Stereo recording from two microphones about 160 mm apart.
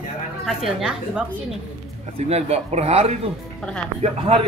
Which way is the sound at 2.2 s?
40° right (ahead or behind).